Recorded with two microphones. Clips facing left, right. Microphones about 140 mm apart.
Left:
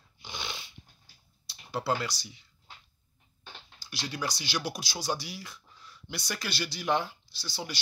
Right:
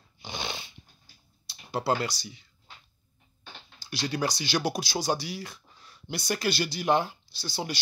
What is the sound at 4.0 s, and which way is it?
Speech, 65° right (ahead or behind).